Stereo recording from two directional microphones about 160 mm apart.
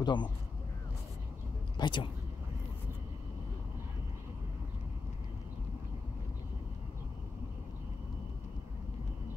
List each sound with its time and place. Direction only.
0.0 s speech: 30° left (ahead or behind)
1.8 s speech: 30° left (ahead or behind)